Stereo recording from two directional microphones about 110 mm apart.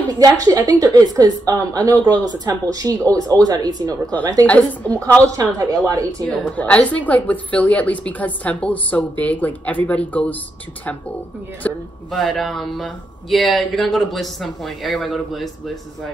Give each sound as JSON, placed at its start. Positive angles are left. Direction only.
{"t": 0.2, "sound": "a woman's voice", "side_deg": -30}
{"t": 4.5, "sound": "a woman's voice", "side_deg": 10}
{"t": 5.2, "sound": "a woman's voice", "side_deg": -30}
{"t": 6.2, "sound": "a woman's voice", "side_deg": 10}
{"t": 11.6, "sound": "a woman's voice", "side_deg": 15}
{"t": 12.1, "sound": "speech", "side_deg": 0}